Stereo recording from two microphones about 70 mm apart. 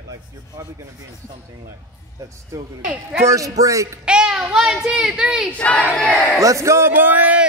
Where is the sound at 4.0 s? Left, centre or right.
Centre.